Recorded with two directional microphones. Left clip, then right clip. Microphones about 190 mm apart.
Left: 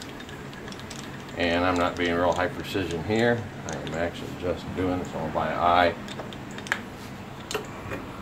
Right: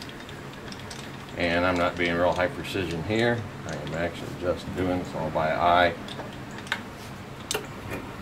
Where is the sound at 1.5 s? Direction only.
30° left (ahead or behind).